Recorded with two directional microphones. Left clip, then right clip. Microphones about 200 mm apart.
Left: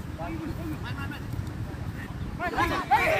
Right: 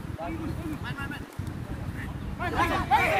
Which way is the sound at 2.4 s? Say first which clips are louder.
Even; 55° right (ahead or behind).